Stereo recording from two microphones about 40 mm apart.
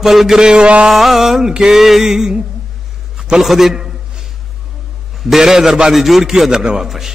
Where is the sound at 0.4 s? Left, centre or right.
Right.